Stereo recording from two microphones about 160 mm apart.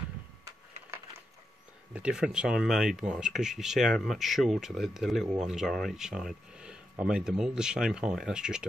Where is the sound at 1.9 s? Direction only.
5° right (ahead or behind).